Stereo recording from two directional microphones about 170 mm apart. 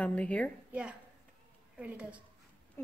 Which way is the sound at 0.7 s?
5° right (ahead or behind).